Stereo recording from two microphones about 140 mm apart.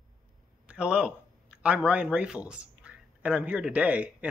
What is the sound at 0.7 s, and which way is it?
A man's voice, 5° right (ahead or behind).